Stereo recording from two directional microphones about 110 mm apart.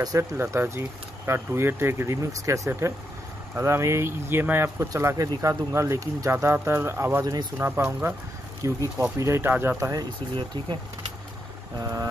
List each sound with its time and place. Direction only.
0.0 s speech: 30° right (ahead or behind)
10.3 s speech: 45° right (ahead or behind)
11.8 s a sound: 30° right (ahead or behind)